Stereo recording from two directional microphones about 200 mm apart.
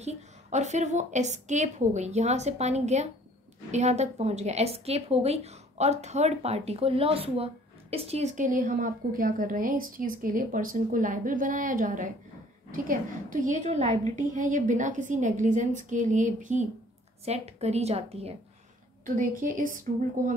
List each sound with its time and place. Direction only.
0.0 s a woman's voice: 35° right (ahead or behind)
19.4 s a woman's voice: 40° right (ahead or behind)